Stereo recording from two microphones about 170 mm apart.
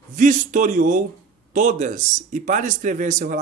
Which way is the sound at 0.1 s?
45° right (ahead or behind).